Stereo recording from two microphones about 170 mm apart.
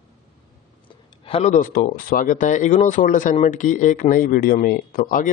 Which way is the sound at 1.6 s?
55° left (ahead or behind).